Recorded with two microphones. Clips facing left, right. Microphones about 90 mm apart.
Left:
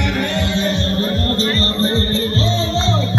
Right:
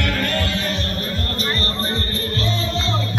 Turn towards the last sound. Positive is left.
turn(degrees=30)  # may be behind; listen again after turning